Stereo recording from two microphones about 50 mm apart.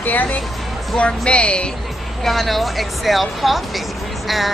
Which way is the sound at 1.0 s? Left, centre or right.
Left.